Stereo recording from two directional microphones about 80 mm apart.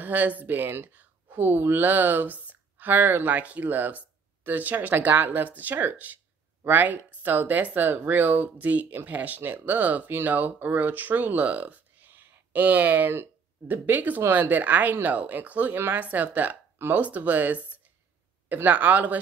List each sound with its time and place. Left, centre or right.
0.0 s speech: right